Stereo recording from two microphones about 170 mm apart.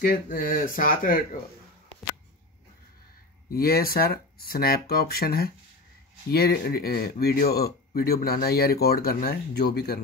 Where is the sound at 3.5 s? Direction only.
60° left (ahead or behind).